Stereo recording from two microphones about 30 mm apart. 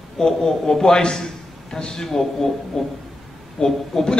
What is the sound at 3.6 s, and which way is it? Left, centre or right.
Speech, left.